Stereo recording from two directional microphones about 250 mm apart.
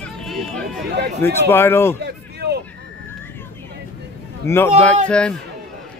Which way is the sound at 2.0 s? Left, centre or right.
Right.